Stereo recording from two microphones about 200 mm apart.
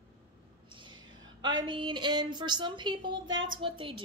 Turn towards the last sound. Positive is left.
turn(degrees=-25)  # may be behind; listen again after turning